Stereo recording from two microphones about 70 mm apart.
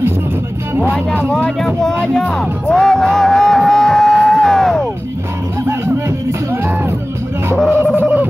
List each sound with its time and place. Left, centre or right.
1.3 s a sound: centre
2.1 s music: centre
5.7 s music: right
7.7 s music: right